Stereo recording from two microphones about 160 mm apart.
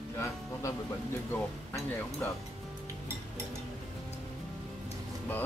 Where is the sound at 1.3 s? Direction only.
10° left (ahead or behind).